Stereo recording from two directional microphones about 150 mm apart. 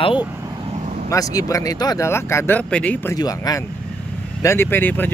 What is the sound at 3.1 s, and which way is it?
Speech, 25° left (ahead or behind).